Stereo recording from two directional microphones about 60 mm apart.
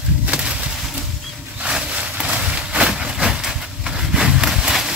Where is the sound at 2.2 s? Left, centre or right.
Centre.